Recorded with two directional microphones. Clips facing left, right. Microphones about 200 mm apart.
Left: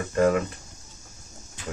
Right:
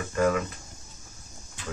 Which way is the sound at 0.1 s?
35° left (ahead or behind).